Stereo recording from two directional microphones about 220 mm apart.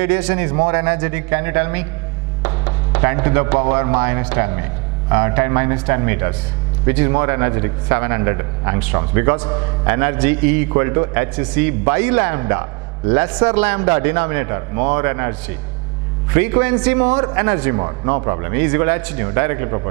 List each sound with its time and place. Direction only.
0.0 s a man's voice: 10° right (ahead or behind)
16.3 s a man's voice: 10° right (ahead or behind)